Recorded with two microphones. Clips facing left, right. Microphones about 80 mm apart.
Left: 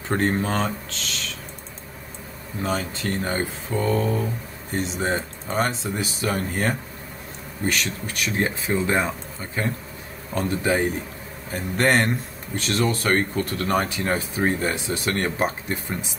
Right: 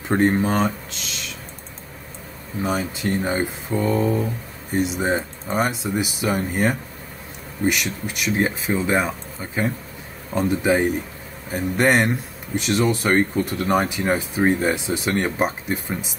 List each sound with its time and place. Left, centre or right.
0.1 s speech: centre
2.6 s speech: centre